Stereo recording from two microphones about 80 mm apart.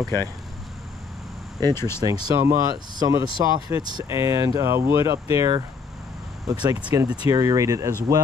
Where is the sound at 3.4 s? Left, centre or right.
Right.